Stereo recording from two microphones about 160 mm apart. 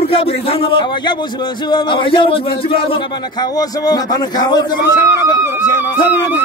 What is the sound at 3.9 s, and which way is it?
Speech, 25° left (ahead or behind).